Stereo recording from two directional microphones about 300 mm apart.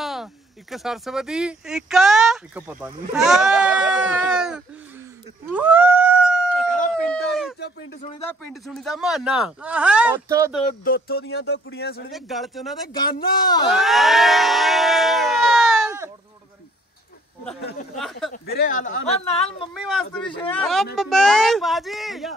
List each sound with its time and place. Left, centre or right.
0.0 s speech: centre
5.5 s howl: centre
6.7 s a sound: left
8.3 s speech: centre
10.6 s speech: left
12.1 s speech: centre
12.9 s speech: centre
13.7 s a sound: centre
17.9 s speech: centre
18.3 s speech: left
20.5 s speech: centre